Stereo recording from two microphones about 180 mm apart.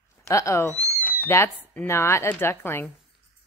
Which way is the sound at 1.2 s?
15° left (ahead or behind).